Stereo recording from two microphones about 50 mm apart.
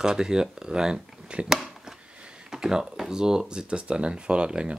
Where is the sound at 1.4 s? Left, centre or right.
Centre.